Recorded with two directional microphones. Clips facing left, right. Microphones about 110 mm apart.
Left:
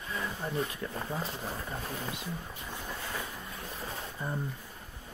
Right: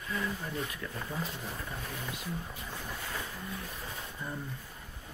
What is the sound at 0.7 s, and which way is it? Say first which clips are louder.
Speech: left 3 dB; 30° left (ahead or behind).